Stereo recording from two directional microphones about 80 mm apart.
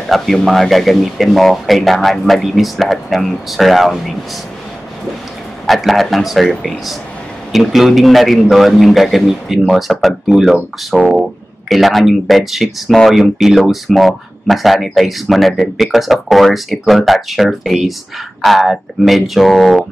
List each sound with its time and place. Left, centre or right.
0.1 s speech: centre
5.7 s speech: centre